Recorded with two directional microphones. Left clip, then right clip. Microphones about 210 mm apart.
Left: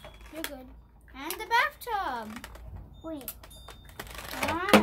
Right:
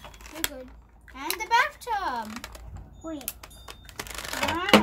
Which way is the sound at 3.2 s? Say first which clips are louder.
Right 4 dB; 30° right (ahead or behind).